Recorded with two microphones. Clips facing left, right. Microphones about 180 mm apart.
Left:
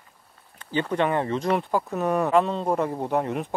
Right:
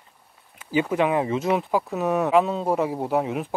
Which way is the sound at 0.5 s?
10° right (ahead or behind).